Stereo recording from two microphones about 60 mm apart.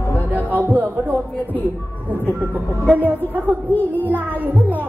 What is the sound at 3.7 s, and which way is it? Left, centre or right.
Child singing, left.